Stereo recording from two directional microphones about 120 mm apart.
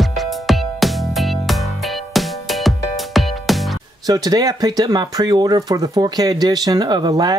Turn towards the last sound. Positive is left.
turn(degrees=-35)  # may be behind; listen again after turning